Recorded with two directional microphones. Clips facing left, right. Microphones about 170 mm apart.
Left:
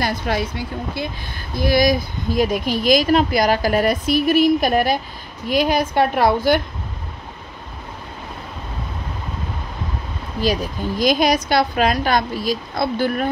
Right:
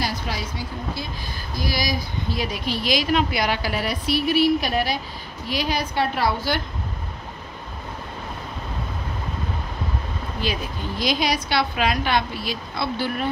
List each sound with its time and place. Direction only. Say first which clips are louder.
0.0 s speech: left 6 dB; 55° left (ahead or behind)
10.4 s speech: left 8 dB; 45° left (ahead or behind)